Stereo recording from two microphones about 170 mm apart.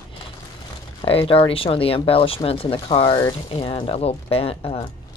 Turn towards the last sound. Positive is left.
turn(degrees=35)  # may be behind; listen again after turning